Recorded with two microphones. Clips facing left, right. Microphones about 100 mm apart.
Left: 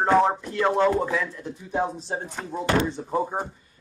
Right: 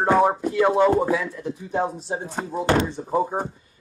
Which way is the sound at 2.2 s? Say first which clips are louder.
Right 4 dB; 35° right (ahead or behind).